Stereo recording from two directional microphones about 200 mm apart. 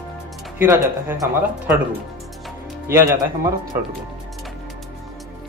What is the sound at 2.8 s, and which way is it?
Speech, 15° right (ahead or behind).